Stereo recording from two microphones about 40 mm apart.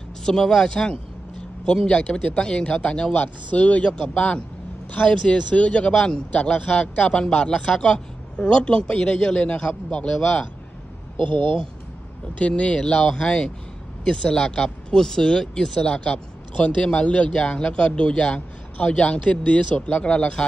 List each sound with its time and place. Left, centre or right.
0.2 s a man's voice: centre
3.1 s speech: left
3.8 s a man's voice: left
12.4 s a man's voice: left; by 16.0 s centre
16.0 s a man's voice: left